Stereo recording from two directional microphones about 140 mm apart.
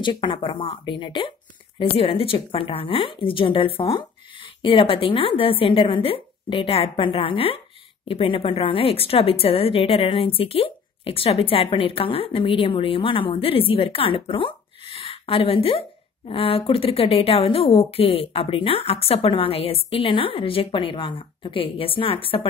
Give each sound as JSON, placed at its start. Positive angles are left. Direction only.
{"t": 0.0, "sound": "a woman's voice", "side_deg": 35}